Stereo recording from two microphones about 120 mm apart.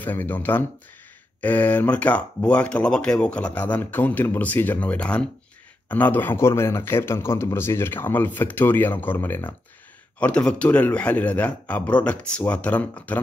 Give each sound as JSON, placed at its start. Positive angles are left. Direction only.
{"t": 0.0, "sound": "a man's voice", "side_deg": 15}